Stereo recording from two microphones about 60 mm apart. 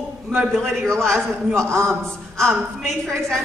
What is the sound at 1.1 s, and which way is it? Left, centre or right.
Speech, right.